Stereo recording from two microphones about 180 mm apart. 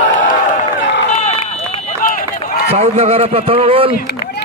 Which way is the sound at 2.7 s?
35° right (ahead or behind).